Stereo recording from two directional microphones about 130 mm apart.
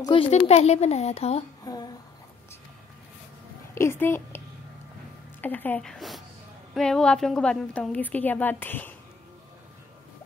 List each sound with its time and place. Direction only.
0.0 s a woman's voice: 40° left (ahead or behind)
0.3 s speech: 55° left (ahead or behind)
1.6 s a sound: 30° left (ahead or behind)
3.7 s a woman's voice: 20° left (ahead or behind)
5.4 s a woman's voice: 15° left (ahead or behind)